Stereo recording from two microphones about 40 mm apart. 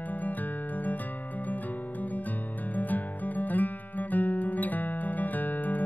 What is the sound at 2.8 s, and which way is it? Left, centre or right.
Music, left.